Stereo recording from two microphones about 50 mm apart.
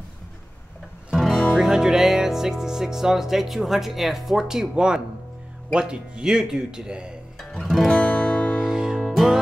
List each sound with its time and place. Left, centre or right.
1.1 s music: centre
5.7 s speech: centre
7.6 s music: centre
7.9 s guitar: left
8.5 s music: centre
8.9 s music: centre